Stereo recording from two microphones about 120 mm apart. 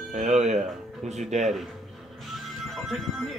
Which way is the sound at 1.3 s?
75° right (ahead or behind).